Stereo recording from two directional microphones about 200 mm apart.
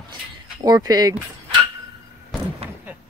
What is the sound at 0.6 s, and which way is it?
Speech, 20° right (ahead or behind).